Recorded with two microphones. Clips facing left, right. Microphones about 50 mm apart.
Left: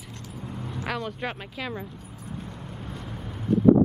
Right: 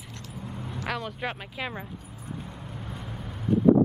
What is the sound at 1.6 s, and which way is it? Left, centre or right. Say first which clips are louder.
Speech: left 1 dB; centre.